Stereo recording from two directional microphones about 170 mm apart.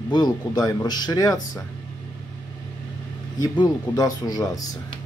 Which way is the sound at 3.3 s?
25° left (ahead or behind).